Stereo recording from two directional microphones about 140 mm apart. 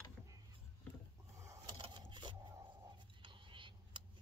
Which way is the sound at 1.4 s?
20° right (ahead or behind).